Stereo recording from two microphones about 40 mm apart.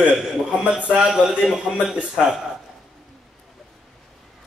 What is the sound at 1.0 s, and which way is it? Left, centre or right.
Speech, centre.